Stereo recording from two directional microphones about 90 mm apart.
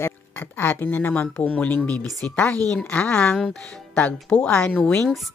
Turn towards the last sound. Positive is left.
turn(degrees=10)  # may be behind; listen again after turning